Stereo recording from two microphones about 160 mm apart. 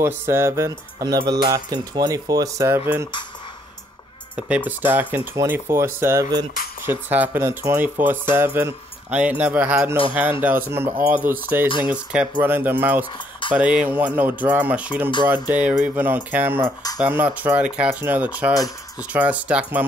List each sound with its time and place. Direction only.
0.0 s speech: 15° right (ahead or behind)
4.4 s speech: 10° right (ahead or behind)